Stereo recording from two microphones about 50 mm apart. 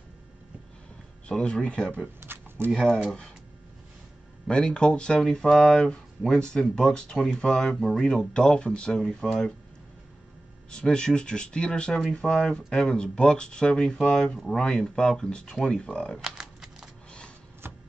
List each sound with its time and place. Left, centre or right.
1.4 s speech: left
2.1 s a sound: right
4.5 s speech: centre
9.0 s speech: centre
10.7 s speech: centre
16.2 s typewriter: centre
17.6 s music: right